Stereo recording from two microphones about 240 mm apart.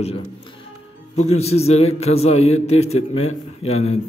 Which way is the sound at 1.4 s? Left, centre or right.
Left.